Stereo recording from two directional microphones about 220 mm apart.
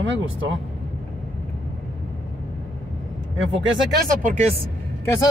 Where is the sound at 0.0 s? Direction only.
60° right (ahead or behind).